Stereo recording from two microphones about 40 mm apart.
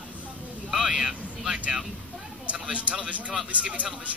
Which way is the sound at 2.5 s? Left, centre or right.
Right.